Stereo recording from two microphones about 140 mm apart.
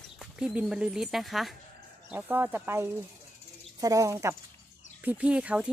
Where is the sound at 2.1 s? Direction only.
10° right (ahead or behind).